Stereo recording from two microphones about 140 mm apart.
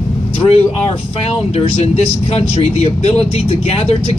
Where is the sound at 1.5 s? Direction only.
50° left (ahead or behind).